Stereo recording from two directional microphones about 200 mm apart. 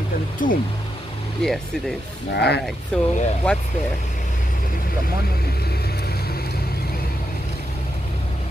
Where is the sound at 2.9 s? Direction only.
5° left (ahead or behind).